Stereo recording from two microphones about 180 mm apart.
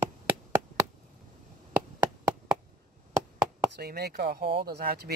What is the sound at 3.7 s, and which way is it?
Speech, 65° right (ahead or behind).